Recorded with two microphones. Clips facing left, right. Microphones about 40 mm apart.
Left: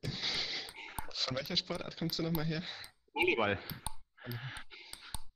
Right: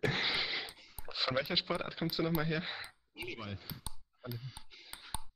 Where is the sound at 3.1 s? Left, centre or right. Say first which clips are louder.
Left 14 dB; left.